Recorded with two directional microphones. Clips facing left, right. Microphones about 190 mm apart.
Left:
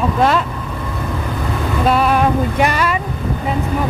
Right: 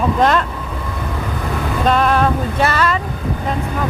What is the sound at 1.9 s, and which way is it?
Speech, 10° left (ahead or behind).